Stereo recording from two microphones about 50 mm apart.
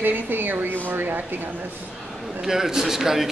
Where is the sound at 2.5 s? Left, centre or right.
Centre.